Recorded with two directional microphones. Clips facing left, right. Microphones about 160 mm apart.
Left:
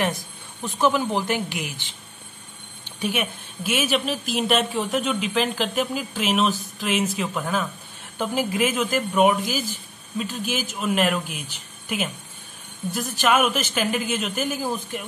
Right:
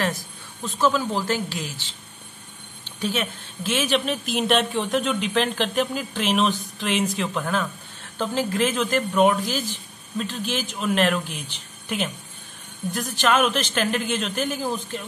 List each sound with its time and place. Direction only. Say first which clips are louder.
0.6 s a man's voice: left 1 dB; 15° left (ahead or behind)